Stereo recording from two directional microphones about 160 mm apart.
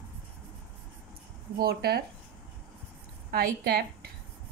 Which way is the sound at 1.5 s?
75° right (ahead or behind).